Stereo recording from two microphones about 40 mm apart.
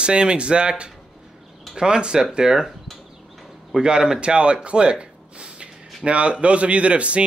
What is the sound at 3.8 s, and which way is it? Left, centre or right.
Speech, centre.